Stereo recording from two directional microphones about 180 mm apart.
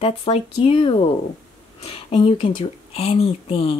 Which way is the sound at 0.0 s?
30° left (ahead or behind).